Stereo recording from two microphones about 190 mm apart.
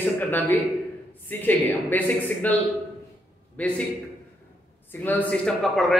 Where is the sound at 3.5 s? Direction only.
5° left (ahead or behind).